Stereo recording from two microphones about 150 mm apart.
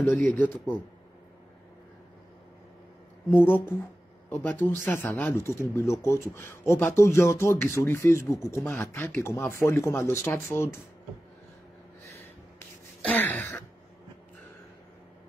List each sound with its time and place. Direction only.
0.3 s speech: 10° left (ahead or behind)
3.3 s speech: 15° left (ahead or behind)
12.5 s a sound: 10° left (ahead or behind)